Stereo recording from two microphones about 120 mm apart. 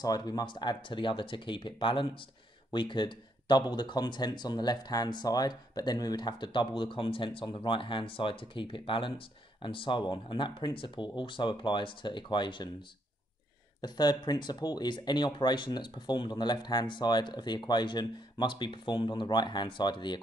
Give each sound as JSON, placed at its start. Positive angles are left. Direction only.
{"t": 0.0, "sound": "speech", "side_deg": 35}
{"t": 13.7, "sound": "speech", "side_deg": 35}